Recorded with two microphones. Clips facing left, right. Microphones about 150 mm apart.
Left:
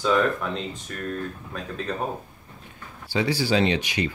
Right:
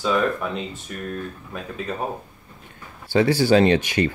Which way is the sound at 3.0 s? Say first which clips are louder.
Right 6 dB; 55° right (ahead or behind).